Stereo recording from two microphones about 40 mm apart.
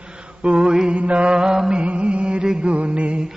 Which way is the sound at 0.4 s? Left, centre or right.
Right.